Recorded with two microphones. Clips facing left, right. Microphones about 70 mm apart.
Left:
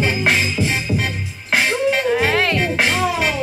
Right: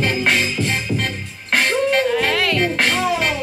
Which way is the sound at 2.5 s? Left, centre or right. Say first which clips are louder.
Even; centre.